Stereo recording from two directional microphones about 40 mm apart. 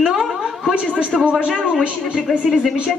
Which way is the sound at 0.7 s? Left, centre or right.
Right.